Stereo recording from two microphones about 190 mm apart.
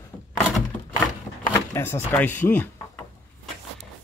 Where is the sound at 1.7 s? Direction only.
10° left (ahead or behind).